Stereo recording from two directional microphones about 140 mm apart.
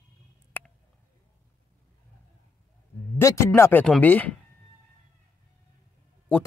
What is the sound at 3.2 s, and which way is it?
Speech, 20° left (ahead or behind).